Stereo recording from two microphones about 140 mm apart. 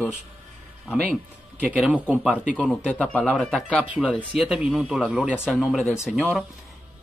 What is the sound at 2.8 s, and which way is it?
Speech, 5° left (ahead or behind).